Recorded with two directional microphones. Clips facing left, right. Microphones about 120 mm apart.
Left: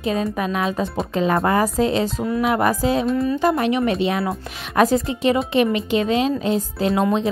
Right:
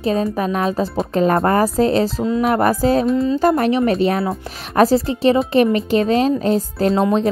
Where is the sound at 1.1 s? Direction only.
45° right (ahead or behind).